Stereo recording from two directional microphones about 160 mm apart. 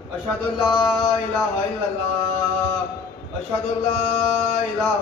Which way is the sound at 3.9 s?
40° left (ahead or behind).